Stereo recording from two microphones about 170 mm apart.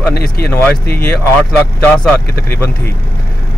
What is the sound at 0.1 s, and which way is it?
Speech, 65° left (ahead or behind).